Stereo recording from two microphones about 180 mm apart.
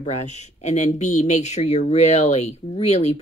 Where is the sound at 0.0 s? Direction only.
40° left (ahead or behind).